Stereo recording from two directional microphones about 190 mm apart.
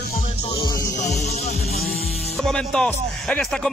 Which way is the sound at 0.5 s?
20° left (ahead or behind).